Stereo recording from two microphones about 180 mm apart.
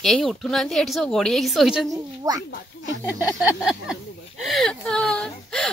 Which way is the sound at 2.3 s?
20° right (ahead or behind).